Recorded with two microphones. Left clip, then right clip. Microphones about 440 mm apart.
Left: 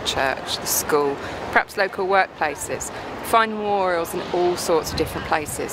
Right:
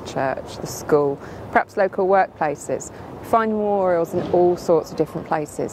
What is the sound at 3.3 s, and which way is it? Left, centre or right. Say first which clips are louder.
Speech: even; right.